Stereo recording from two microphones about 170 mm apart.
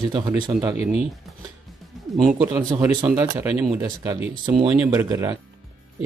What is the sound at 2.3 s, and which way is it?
Speech, 10° right (ahead or behind).